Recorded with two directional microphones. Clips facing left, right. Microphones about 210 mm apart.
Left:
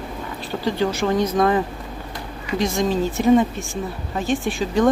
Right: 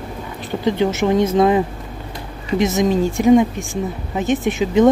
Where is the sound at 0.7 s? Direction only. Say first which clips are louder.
Right 4 dB; 20° right (ahead or behind).